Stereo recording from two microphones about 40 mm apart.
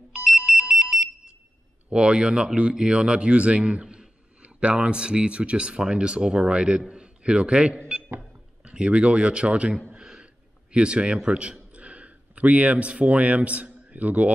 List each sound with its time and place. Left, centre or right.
0.5 s telephone dialing: right
1.9 s speech: right
3.8 s a sound: centre
4.4 s a man's voice: right
9.9 s a sound: right
10.7 s speech: right